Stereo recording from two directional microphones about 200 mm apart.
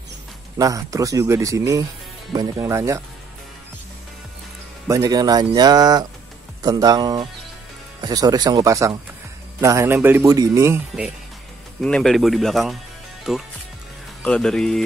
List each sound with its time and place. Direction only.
0.6 s speech: 15° right (ahead or behind)
4.8 s speech: 15° right (ahead or behind)
11.8 s speech: 5° left (ahead or behind)